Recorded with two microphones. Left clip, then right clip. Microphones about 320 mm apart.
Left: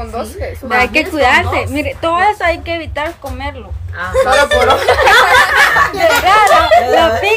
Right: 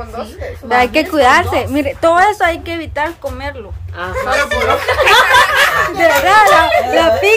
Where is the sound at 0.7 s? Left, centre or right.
Centre.